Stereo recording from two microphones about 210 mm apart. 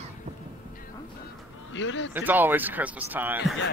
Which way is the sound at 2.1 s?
10° right (ahead or behind).